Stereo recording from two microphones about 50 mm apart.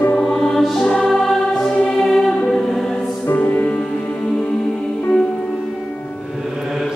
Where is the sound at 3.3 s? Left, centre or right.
Left.